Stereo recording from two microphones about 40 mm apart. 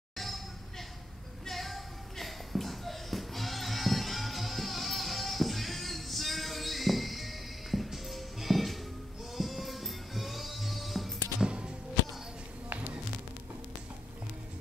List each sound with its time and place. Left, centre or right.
0.2 s a sound: centre
9.3 s music: centre
11.4 s music: right